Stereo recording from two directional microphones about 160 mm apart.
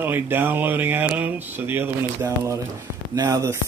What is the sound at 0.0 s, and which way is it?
Speech, 10° right (ahead or behind).